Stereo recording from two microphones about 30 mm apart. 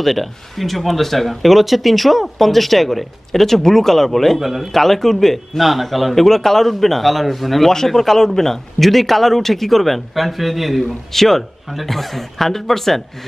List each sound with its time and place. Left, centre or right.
0.0 s speech: centre
4.4 s speech: centre
4.7 s a man's voice: centre
7.7 s a man's voice: centre
10.8 s a man's voice: centre